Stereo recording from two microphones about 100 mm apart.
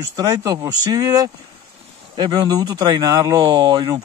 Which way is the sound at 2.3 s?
45° right (ahead or behind).